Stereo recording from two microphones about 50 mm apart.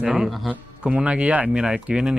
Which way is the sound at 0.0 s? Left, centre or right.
Centre.